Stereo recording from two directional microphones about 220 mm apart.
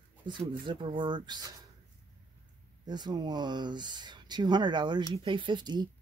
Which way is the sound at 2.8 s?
20° right (ahead or behind).